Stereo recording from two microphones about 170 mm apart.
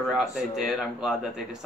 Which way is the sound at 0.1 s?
Centre (ahead or behind).